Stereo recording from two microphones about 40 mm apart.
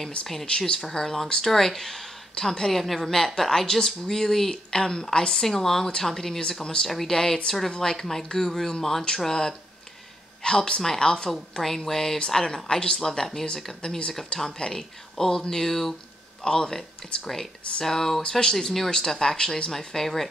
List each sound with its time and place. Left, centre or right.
0.5 s speech: left
0.7 s speech: centre
6.9 s speech: centre
14.7 s speech: centre